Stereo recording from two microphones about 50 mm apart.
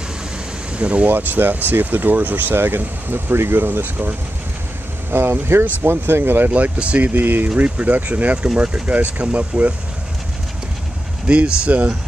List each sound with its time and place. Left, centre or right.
0.7 s speech: right
1.1 s speech: right
5.1 s speech: right
6.5 s speech: right
7.2 s speech: right
11.2 s speech: right